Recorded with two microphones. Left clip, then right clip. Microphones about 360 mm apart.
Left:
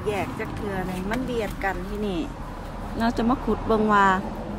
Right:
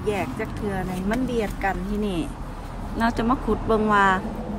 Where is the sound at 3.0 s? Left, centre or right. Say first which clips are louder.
Right 1 dB; centre.